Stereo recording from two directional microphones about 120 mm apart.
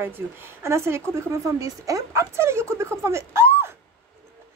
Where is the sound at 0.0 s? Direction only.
20° right (ahead or behind).